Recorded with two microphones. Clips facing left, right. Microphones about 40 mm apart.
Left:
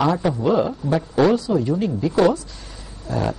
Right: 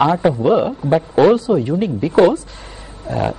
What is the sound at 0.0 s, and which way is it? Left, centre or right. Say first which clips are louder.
A man's voice: right 5 dB; right.